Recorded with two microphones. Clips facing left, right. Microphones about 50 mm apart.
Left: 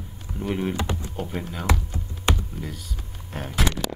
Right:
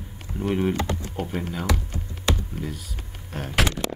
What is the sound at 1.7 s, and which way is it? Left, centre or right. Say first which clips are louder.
Computer keyboard: left 1 dB; left.